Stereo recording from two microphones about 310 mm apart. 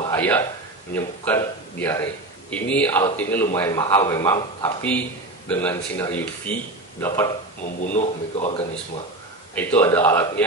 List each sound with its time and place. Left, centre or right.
0.0 s a man's voice: centre
7.6 s speech: left
9.6 s a man's voice: centre